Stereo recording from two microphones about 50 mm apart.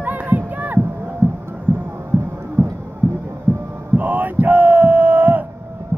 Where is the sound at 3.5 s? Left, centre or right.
Right.